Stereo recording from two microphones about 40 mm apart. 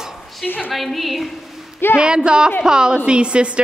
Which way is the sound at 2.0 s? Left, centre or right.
Right.